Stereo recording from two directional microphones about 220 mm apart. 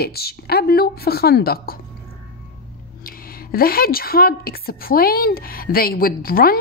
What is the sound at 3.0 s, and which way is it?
A woman's voice, 40° left (ahead or behind).